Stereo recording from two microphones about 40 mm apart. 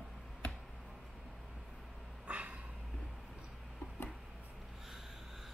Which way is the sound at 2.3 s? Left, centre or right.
Right.